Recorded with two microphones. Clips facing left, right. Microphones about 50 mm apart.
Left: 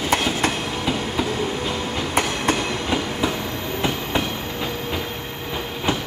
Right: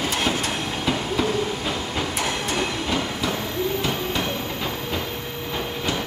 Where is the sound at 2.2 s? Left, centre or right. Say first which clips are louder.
Left 7 dB; left.